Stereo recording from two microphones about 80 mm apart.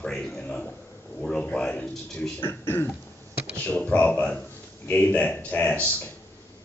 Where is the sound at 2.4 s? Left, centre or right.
Left.